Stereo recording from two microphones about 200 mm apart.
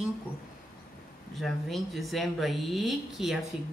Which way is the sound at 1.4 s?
Centre (ahead or behind).